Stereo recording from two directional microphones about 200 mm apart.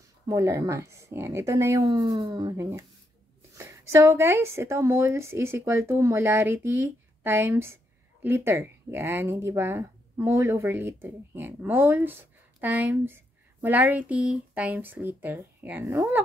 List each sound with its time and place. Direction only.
0.3 s a woman's voice: 15° right (ahead or behind)